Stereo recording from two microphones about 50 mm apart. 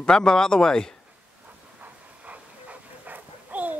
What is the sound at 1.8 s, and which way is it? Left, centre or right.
Dog, right.